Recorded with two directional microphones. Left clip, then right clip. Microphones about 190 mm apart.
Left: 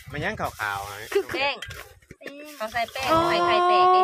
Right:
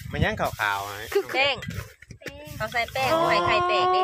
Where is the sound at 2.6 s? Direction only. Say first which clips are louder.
Right 2 dB; 25° right (ahead or behind).